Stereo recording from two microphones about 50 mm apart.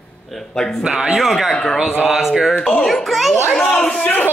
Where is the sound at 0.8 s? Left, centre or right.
Centre.